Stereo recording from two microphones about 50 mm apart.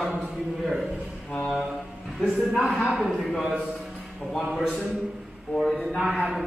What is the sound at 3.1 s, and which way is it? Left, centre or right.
Speech, centre.